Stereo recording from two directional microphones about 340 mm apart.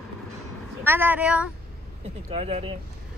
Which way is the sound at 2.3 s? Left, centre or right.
Centre.